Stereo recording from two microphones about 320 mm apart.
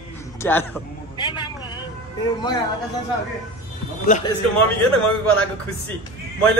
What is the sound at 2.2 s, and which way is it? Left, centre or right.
Speech, centre.